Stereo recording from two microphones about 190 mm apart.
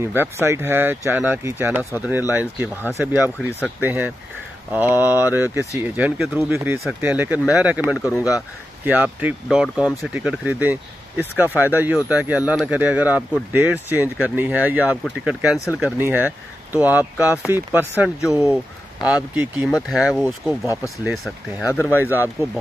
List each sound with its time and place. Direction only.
0.0 s speech: 10° right (ahead or behind)
3.3 s speech: 5° left (ahead or behind)
3.8 s speech: 10° right (ahead or behind)